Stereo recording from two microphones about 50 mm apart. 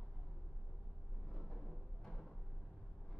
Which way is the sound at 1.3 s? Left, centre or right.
Centre.